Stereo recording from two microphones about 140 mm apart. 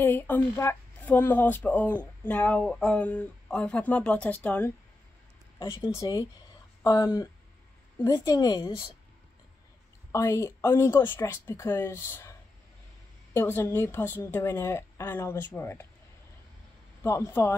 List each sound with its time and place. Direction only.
0.0 s speech: 15° left (ahead or behind)
5.6 s speech: 30° left (ahead or behind)
10.1 s speech: 20° left (ahead or behind)
17.0 s speech: 20° left (ahead or behind)